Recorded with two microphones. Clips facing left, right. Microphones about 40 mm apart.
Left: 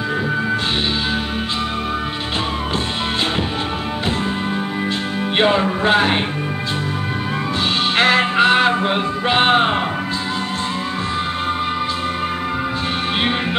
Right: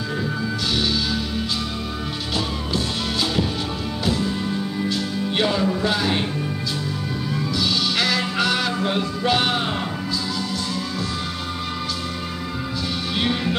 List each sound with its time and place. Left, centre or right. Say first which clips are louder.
5.4 s music: left 5 dB; left
7.9 s music: left 7 dB; left